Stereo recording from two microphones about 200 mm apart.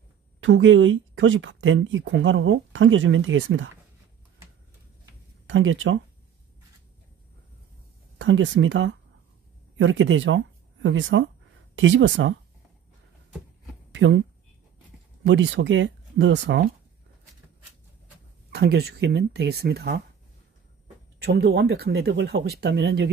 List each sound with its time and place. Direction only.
0.4 s speech: 75° right (ahead or behind)
5.5 s speech: 75° right (ahead or behind)
8.2 s speech: 70° right (ahead or behind)
13.9 s speech: 65° right (ahead or behind)
15.2 s speech: 65° right (ahead or behind)
18.5 s speech: 55° right (ahead or behind)
21.2 s speech: 55° right (ahead or behind)